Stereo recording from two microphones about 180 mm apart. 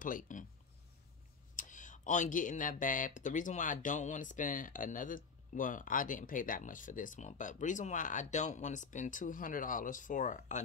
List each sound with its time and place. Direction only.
0.0 s speech: 50° left (ahead or behind)
1.6 s speech: 45° left (ahead or behind)